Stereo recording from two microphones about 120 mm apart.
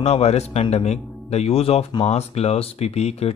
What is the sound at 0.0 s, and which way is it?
Speech, 60° left (ahead or behind).